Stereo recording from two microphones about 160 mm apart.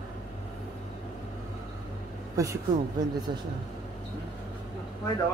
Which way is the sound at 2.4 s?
20° right (ahead or behind).